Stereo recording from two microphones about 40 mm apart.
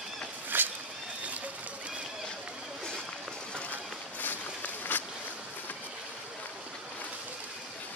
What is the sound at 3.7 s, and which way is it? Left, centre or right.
Run, left.